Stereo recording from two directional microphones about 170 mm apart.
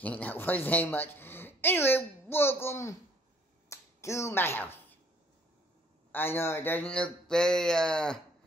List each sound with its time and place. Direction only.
0.0 s a woman's voice: 10° left (ahead or behind)
6.1 s speech: 15° left (ahead or behind)